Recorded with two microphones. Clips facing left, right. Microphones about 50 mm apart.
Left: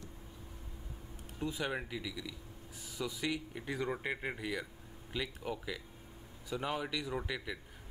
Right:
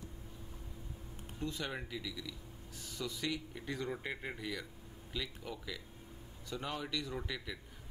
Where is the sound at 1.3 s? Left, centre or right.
Centre.